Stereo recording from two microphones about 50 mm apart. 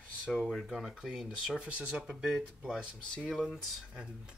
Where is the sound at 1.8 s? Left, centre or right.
Centre.